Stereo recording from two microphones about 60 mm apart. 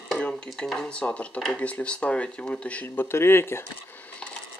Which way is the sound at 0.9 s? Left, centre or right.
Centre.